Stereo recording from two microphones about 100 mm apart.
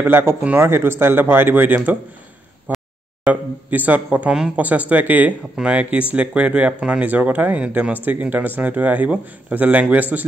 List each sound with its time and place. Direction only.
0.0 s speech: 25° right (ahead or behind)
2.7 s a sound: 15° right (ahead or behind)
3.3 s speech: 15° right (ahead or behind)